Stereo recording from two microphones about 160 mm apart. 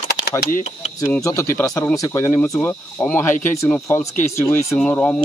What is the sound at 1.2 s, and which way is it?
Speech, 20° left (ahead or behind).